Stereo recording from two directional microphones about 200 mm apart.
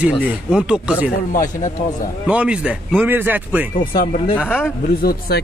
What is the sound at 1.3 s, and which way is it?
Speech, 40° left (ahead or behind).